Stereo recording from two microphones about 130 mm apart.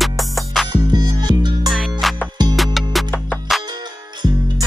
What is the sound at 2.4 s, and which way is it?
Music, 35° right (ahead or behind).